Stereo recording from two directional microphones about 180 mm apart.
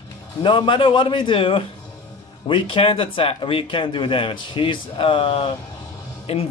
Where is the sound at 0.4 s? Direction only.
25° left (ahead or behind).